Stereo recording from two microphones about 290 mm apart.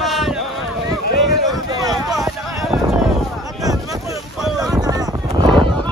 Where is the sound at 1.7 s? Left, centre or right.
Centre.